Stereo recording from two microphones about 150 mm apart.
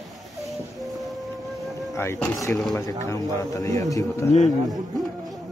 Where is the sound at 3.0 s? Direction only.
25° left (ahead or behind).